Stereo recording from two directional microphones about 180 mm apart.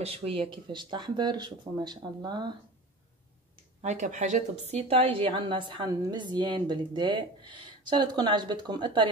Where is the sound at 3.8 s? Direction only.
40° right (ahead or behind).